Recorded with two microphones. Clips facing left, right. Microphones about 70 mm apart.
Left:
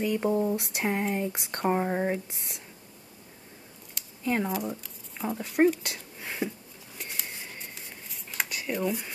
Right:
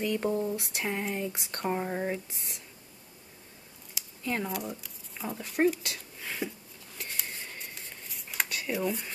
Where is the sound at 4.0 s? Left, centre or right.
Centre.